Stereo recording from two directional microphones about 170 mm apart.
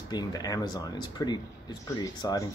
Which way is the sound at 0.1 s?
20° left (ahead or behind).